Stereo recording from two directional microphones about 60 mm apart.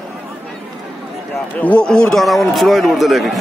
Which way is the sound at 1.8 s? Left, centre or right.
Centre.